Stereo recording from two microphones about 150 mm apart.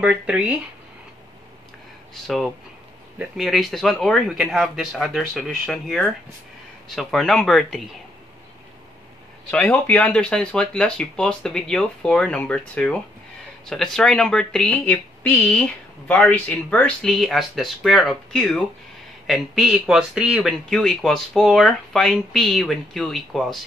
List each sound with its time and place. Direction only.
0.0 s speech: 10° right (ahead or behind)
2.2 s speech: centre (ahead or behind)
9.5 s speech: 5° left (ahead or behind)